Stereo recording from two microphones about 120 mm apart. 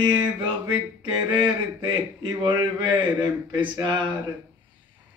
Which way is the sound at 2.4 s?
40° right (ahead or behind).